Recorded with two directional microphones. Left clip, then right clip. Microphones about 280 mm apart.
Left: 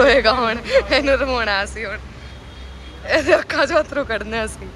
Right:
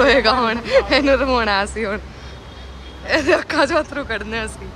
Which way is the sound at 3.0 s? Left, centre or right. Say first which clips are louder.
Left 1 dB; centre.